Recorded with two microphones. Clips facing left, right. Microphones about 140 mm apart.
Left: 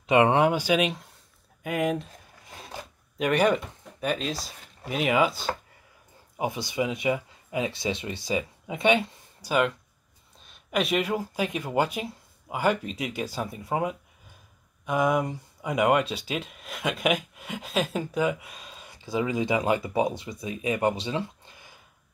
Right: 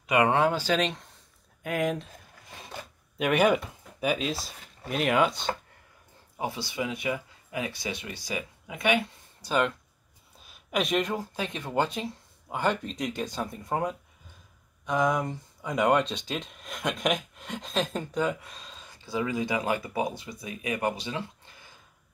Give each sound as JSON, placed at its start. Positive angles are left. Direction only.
{"t": 0.0, "sound": "speech", "side_deg": 25}
{"t": 6.3, "sound": "speech", "side_deg": 15}
{"t": 9.4, "sound": "speech", "side_deg": 5}